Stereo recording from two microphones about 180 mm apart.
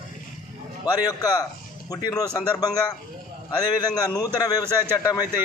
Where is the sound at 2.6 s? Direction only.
20° left (ahead or behind).